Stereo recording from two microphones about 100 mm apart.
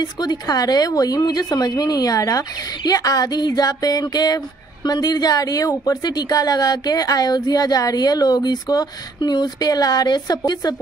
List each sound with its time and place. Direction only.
0.0 s a woman's voice: 45° left (ahead or behind)